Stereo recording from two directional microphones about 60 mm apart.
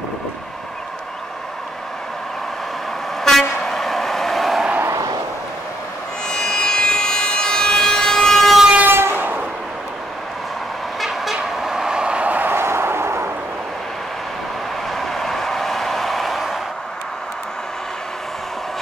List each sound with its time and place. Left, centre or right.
3.3 s vehicle: centre
6.2 s siren: centre
8.8 s train: right
11.0 s vehicle: centre; by 12.5 s right
12.5 s a sound: right
15.0 s a sound: centre